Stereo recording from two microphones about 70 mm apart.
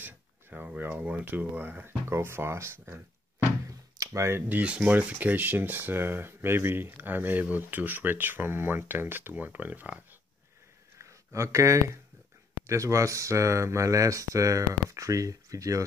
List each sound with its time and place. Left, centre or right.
0.0 s speech: right
3.6 s a sound: right
4.5 s speech: centre
11.0 s speech: right